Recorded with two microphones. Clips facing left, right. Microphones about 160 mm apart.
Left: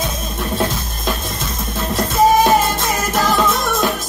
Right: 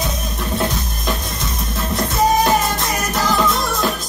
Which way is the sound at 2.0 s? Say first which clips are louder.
Left 3 dB; 25° left (ahead or behind).